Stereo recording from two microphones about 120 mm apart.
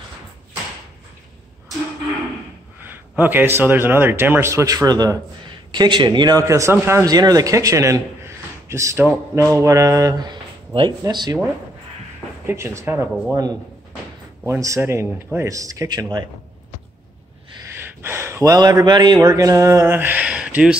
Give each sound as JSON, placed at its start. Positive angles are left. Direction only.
{"t": 2.8, "sound": "speech", "side_deg": -15}
{"t": 12.4, "sound": "speech", "side_deg": -20}
{"t": 17.7, "sound": "speech", "side_deg": -20}